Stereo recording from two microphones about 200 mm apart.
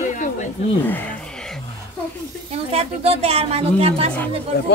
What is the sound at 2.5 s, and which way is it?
A woman's voice, 30° right (ahead or behind).